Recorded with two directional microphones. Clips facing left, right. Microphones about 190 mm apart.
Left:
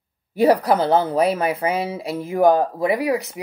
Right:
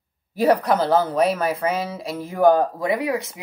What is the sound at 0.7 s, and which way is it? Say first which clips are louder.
Speech: left 1 dB; 30° left (ahead or behind).